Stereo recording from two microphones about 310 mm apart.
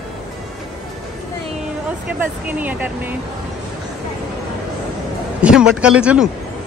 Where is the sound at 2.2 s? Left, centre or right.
Centre.